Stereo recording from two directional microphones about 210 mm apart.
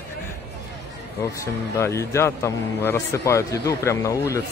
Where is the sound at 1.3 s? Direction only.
15° left (ahead or behind).